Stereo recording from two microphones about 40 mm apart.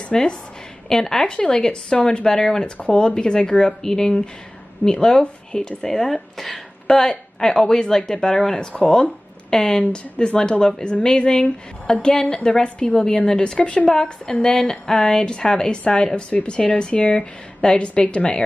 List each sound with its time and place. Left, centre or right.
0.1 s a woman's voice: centre
5.9 s a woman's voice: centre
6.5 s a woman's voice: centre
13.6 s speech: left